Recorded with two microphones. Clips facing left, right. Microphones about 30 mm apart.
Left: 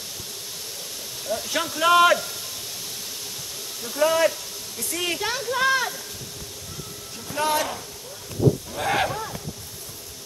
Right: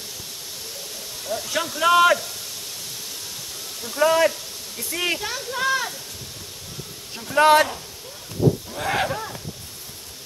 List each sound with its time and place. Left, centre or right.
1.2 s speech: centre
3.8 s speech: centre
5.2 s speech: centre
7.3 s speech: right
8.4 s a sound: right
8.7 s speech: centre